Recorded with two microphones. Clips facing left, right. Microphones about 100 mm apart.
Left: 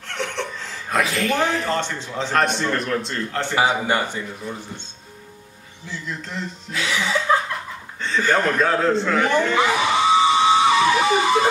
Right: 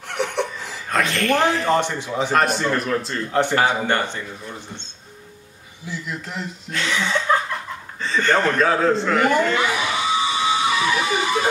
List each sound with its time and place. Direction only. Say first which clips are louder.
0.1 s laughter: right 4 dB; 15° right (ahead or behind)
0.8 s a man's voice: right 1 dB; 5° left (ahead or behind)
1.7 s a man's voice: right 4 dB; 15° right (ahead or behind)
3.3 s a man's voice: right 6 dB; 15° right (ahead or behind)
3.5 s speech: left 4 dB; 10° left (ahead or behind)
5.9 s a man's voice: right 1 dB; 10° right (ahead or behind)
6.7 s a man's voice: even; 5° left (ahead or behind)
9.6 s music: left 4 dB; 35° left (ahead or behind)